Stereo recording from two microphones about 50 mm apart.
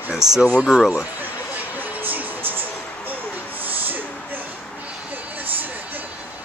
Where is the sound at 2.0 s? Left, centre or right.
Right.